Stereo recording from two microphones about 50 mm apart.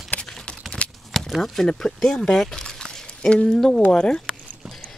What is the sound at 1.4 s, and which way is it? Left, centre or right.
Speech, centre.